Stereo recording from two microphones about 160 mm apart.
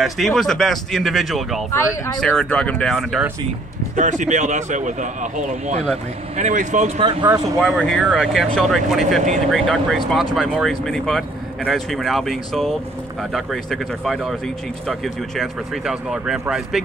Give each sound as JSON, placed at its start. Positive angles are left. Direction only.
{"t": 0.0, "sound": "speech", "side_deg": 0}
{"t": 3.9, "sound": "speech", "side_deg": -50}
{"t": 7.2, "sound": "speech", "side_deg": -25}
{"t": 7.6, "sound": "speech", "side_deg": 5}